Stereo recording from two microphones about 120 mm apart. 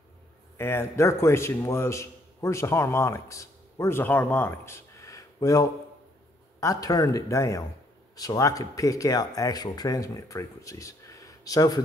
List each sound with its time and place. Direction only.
0.6 s a man's voice: 20° left (ahead or behind)